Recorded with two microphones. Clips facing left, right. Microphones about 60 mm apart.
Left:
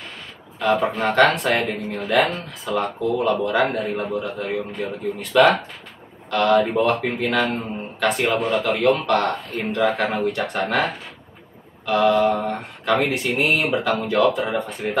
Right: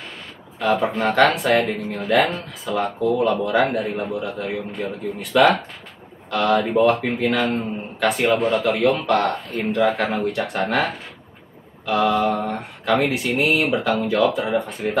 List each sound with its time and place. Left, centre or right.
0.6 s a man's voice: centre
8.5 s speech: right
9.0 s a man's voice: centre